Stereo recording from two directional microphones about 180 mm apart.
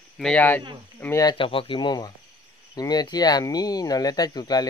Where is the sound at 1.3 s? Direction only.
30° left (ahead or behind).